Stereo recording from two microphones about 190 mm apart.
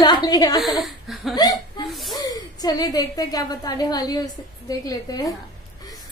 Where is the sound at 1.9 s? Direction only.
Centre (ahead or behind).